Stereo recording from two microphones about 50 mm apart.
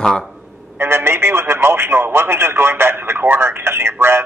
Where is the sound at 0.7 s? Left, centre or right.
Right.